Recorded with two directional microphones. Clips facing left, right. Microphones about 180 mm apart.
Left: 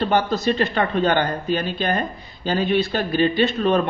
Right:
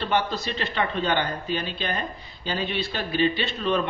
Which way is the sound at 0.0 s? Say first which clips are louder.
Left 6 dB; 45° left (ahead or behind).